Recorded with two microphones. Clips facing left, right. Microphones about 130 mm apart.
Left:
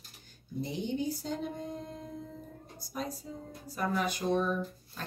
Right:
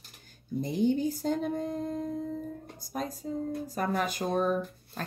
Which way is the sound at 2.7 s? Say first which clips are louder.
Right 1 dB; 45° right (ahead or behind).